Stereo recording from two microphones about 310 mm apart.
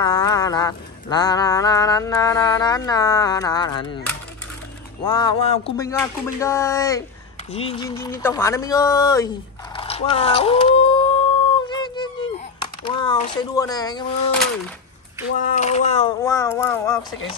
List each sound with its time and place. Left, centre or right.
0.0 s mantra: centre
5.0 s mantra: centre
9.8 s a sound: centre
15.3 s mantra: left